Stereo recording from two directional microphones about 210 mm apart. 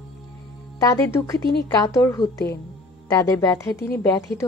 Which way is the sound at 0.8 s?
15° left (ahead or behind).